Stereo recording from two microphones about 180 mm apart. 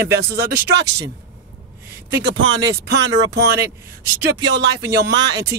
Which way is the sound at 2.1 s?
80° right.